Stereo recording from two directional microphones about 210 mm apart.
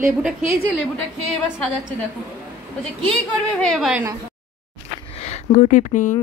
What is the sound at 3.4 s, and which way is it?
Speech, centre (ahead or behind).